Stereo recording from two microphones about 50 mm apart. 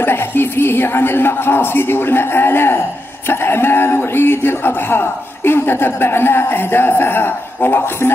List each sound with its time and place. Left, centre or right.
0.0 s a man's voice: left